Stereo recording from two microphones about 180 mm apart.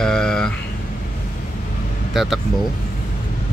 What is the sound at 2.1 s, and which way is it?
Speech, centre (ahead or behind).